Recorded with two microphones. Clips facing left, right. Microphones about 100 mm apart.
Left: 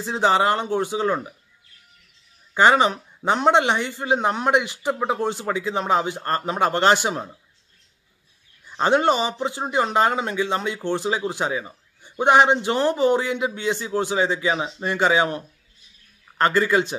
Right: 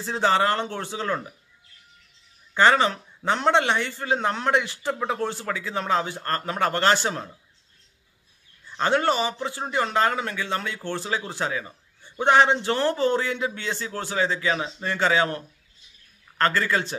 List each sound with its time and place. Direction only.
0.0 s speech: 15° left (ahead or behind)
2.5 s speech: 15° left (ahead or behind)
8.6 s speech: 20° left (ahead or behind)